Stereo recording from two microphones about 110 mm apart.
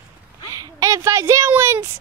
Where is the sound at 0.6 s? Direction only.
30° right (ahead or behind).